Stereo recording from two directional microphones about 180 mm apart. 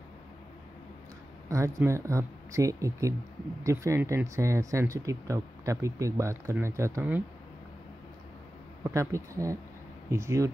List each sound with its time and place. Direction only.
1.5 s speech: 15° right (ahead or behind)
8.8 s speech: 15° right (ahead or behind)